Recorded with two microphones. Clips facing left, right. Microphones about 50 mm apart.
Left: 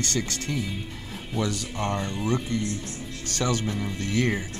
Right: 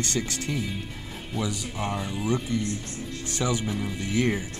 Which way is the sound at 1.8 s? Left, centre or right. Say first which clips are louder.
Left 2 dB; centre.